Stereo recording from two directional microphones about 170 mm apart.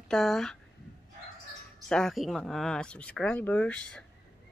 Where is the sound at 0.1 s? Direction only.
Centre (ahead or behind).